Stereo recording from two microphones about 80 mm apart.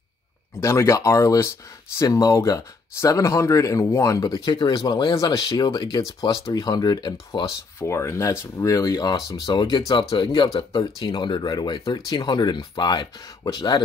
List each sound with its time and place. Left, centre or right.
0.6 s speech: left
4.5 s speech: left
5.1 s speech: left
5.7 s speech: left
7.4 s speech: left
11.4 s speech: left